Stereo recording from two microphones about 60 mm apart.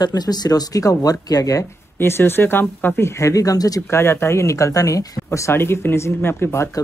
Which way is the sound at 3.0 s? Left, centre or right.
Left.